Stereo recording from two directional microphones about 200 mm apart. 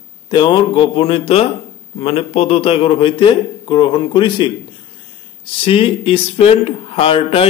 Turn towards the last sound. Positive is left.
turn(degrees=30)  # may be behind; listen again after turning